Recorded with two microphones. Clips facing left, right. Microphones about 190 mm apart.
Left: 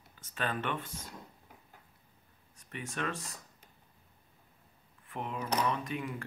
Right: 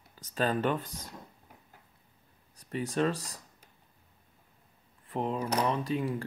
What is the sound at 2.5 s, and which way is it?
Speech, 35° right (ahead or behind).